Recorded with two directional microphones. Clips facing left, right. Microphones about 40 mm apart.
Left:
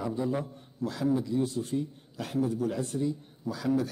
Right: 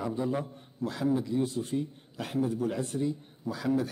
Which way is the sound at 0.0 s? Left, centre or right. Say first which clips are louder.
Even; right.